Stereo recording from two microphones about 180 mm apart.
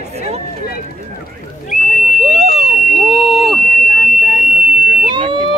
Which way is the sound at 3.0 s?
Centre (ahead or behind).